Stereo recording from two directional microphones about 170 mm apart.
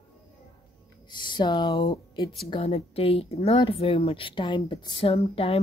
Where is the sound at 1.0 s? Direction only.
25° left (ahead or behind).